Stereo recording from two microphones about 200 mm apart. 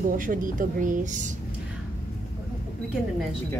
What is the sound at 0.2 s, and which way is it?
A woman's voice, 40° right (ahead or behind).